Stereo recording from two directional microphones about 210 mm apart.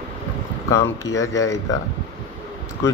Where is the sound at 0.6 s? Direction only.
15° left (ahead or behind).